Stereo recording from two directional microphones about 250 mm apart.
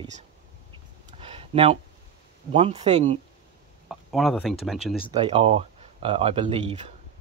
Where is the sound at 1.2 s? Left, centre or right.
Right.